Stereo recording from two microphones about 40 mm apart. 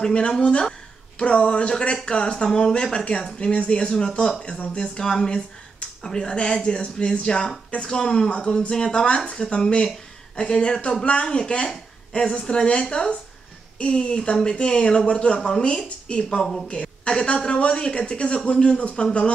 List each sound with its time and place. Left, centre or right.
0.0 s speech: left